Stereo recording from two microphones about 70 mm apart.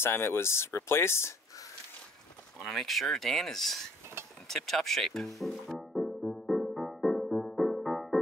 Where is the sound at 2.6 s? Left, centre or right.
Centre.